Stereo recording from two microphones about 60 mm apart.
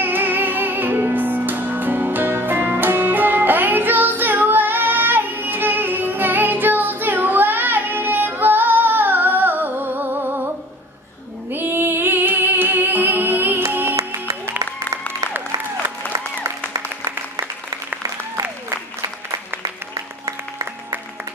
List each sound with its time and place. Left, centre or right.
0.0 s music: right
11.5 s music: right
19.3 s applause: right